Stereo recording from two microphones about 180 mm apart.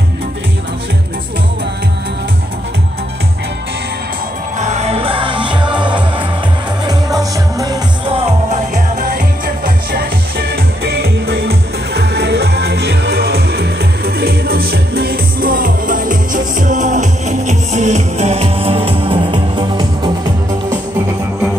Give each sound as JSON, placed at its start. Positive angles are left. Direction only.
{"t": 4.6, "sound": "music", "side_deg": -40}
{"t": 8.1, "sound": "music", "side_deg": -35}
{"t": 10.5, "sound": "music", "side_deg": -60}